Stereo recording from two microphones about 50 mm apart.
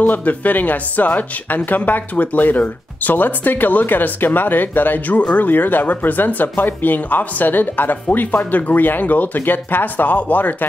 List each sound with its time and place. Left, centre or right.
0.0 s speech: left